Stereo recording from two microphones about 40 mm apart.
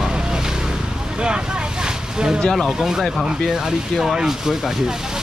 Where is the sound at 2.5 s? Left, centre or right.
Centre.